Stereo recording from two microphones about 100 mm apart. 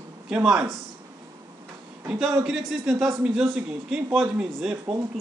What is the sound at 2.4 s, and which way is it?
A man's voice, 5° right (ahead or behind).